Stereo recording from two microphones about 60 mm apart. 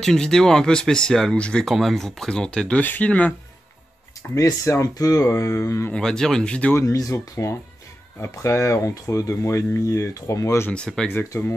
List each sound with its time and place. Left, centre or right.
0.0 s speech: centre
1.7 s speech: centre
2.8 s speech: left
4.4 s speech: left
5.9 s speech: centre
6.8 s speech: left
8.2 s speech: left
9.0 s speech: left
10.9 s speech: centre
11.3 s speech: left